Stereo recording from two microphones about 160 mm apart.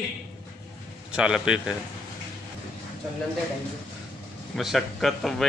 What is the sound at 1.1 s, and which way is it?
Speech, 5° right (ahead or behind).